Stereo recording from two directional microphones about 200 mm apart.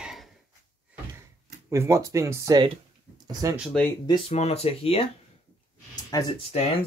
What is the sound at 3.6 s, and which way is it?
Speech, 5° left (ahead or behind).